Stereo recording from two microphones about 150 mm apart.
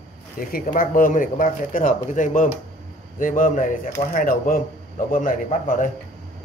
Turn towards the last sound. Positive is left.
turn(degrees=60)  # may be behind; listen again after turning